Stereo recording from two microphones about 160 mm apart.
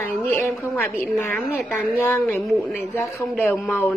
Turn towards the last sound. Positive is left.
turn(degrees=10)  # may be behind; listen again after turning